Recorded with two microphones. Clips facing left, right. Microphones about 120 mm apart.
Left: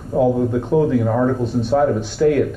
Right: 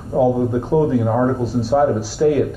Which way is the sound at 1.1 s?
15° right (ahead or behind).